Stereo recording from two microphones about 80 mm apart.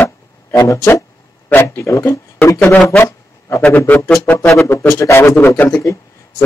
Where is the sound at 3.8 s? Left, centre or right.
Left.